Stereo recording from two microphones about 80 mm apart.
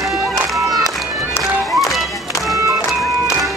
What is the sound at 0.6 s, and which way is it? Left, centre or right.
Music, centre.